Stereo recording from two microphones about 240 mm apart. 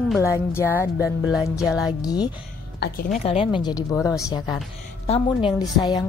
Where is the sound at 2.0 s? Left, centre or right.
Centre.